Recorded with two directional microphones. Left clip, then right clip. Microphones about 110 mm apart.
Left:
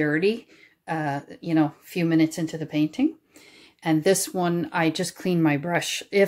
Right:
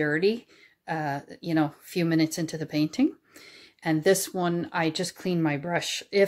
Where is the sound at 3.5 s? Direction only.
30° right (ahead or behind).